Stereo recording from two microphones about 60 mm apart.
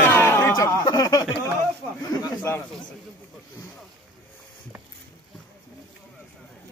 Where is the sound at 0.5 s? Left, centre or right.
Left.